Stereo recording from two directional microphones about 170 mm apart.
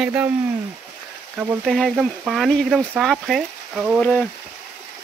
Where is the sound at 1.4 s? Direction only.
5° right (ahead or behind).